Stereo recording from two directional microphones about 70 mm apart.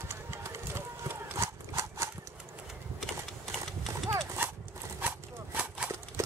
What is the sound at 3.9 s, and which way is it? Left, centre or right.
Clip-clop, right.